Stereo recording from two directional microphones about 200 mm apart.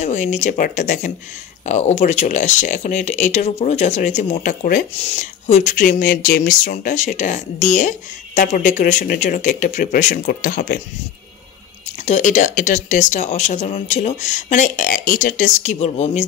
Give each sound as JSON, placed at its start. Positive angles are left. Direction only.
{"t": 0.0, "sound": "speech", "side_deg": 35}
{"t": 12.0, "sound": "speech", "side_deg": 35}